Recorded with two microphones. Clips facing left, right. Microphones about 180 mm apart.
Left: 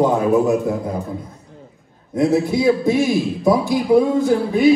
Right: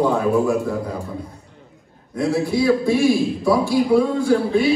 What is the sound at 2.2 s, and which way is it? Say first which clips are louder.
A man's voice: left 3 dB; 20° left (ahead or behind).